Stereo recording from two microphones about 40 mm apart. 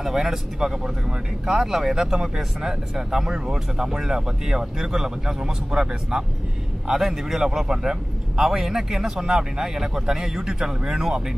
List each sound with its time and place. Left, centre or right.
0.0 s a man's voice: centre